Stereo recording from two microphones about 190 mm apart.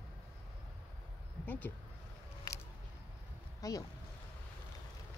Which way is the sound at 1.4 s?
10° left (ahead or behind).